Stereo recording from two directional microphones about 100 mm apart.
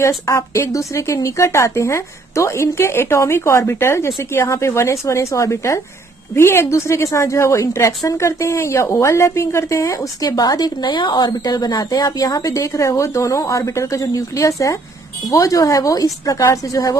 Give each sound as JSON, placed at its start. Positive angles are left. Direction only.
{"t": 0.3, "sound": "a woman's voice", "side_deg": 30}